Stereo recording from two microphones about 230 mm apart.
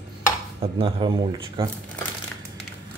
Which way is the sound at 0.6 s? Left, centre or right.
Right.